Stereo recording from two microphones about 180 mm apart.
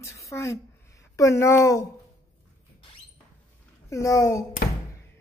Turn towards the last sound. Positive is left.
turn(degrees=15)  # may be behind; listen again after turning